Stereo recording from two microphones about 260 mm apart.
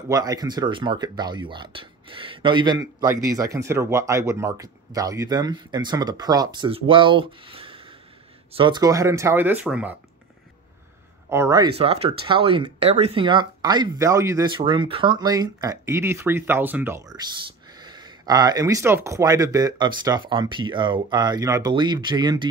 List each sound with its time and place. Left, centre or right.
0.1 s speech: centre
11.2 s speech: centre